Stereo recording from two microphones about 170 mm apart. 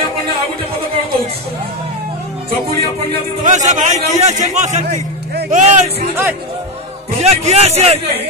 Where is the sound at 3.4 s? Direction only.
45° right (ahead or behind).